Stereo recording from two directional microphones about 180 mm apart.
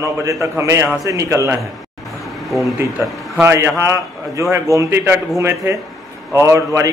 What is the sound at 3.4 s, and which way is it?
A man's voice, 15° right (ahead or behind).